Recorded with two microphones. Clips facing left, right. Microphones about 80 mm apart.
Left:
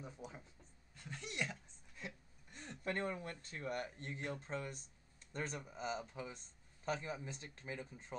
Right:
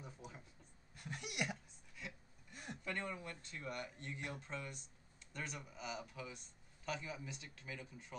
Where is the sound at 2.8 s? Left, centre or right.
Left.